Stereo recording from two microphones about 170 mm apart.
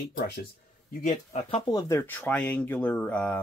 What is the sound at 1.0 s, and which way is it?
Speech, 40° left (ahead or behind).